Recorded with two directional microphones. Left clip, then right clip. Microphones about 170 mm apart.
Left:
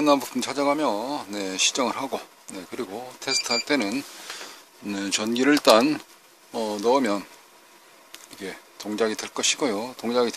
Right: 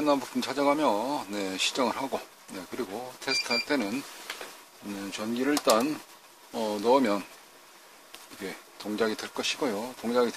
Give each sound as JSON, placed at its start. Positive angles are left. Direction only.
{"t": 0.0, "sound": "speech", "side_deg": 40}
{"t": 0.5, "sound": "speech", "side_deg": 20}
{"t": 5.1, "sound": "speech", "side_deg": 60}
{"t": 6.5, "sound": "speech", "side_deg": 35}